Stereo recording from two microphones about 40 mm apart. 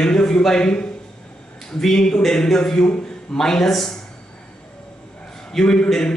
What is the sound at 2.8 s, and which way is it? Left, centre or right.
Speech, left.